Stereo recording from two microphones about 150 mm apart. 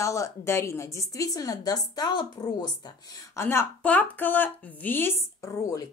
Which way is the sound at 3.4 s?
15° left (ahead or behind).